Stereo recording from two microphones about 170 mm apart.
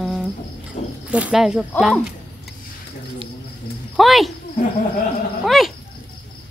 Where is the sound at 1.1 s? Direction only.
5° right (ahead or behind).